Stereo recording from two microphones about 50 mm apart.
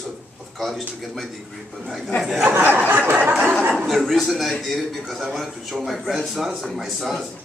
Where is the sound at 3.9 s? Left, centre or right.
Centre.